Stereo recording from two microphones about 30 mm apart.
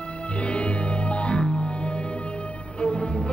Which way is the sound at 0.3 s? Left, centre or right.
Left.